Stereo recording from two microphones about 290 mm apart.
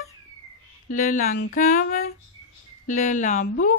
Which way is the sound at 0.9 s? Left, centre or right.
Left.